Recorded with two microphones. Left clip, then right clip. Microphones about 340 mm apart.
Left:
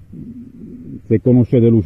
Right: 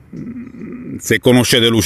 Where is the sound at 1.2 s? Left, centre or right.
Right.